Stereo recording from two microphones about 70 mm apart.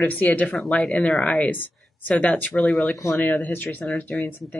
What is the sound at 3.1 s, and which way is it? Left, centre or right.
Speech, left.